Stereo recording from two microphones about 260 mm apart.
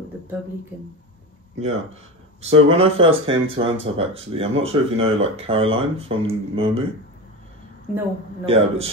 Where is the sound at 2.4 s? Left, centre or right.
Right.